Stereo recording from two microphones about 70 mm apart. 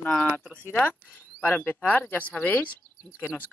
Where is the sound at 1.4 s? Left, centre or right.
Left.